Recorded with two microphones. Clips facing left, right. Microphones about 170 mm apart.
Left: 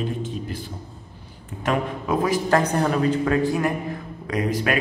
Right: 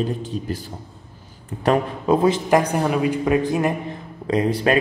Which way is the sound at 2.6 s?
10° right (ahead or behind).